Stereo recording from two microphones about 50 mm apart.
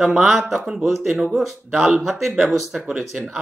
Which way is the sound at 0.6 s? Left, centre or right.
Right.